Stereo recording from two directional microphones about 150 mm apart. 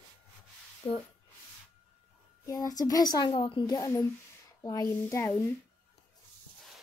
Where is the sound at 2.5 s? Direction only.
25° left (ahead or behind).